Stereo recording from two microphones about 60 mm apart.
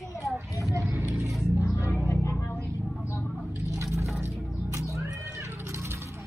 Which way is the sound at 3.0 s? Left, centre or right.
Left.